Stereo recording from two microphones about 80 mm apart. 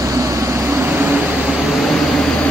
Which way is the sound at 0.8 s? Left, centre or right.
Right.